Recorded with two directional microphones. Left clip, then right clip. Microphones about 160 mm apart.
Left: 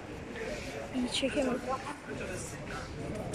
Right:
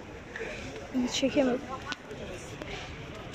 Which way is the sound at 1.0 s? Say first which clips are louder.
Right 4 dB; centre (ahead or behind).